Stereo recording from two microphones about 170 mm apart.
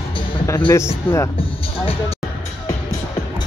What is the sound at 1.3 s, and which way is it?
Speech, 30° left (ahead or behind).